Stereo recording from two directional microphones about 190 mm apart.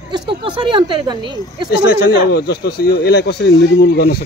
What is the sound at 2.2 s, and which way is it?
Speech, 60° left (ahead or behind).